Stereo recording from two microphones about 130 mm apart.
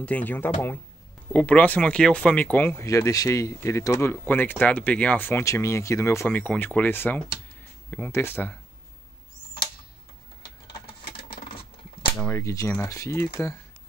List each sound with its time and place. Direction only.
0.0 s speech: 10° left (ahead or behind)
2.8 s speech: 25° left (ahead or behind)
10.7 s a sound: 40° left (ahead or behind)
12.2 s speech: 20° left (ahead or behind)